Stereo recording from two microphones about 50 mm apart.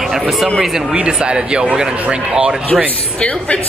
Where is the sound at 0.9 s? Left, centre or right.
Centre.